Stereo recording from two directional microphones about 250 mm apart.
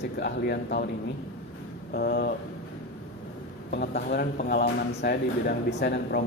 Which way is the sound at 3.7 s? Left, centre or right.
Left.